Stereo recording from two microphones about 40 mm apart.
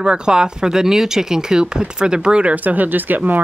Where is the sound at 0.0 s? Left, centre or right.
Right.